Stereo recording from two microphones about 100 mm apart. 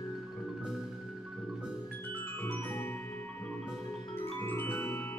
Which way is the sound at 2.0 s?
15° left (ahead or behind).